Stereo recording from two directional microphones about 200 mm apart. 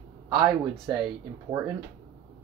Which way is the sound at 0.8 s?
15° right (ahead or behind).